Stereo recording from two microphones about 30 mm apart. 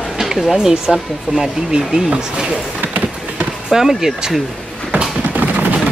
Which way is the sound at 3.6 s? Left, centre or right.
Centre.